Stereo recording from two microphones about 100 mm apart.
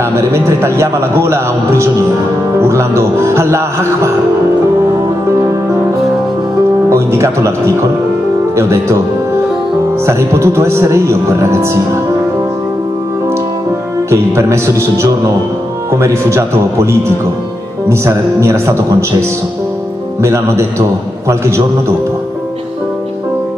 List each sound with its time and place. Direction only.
0.1 s speech: 25° right (ahead or behind)
6.9 s speech: 30° right (ahead or behind)
10.0 s speech: 30° right (ahead or behind)
14.1 s speech: 30° right (ahead or behind)
20.2 s speech: 30° right (ahead or behind)